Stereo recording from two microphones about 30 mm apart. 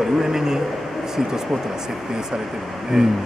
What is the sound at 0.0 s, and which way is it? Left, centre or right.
A man's voice, centre.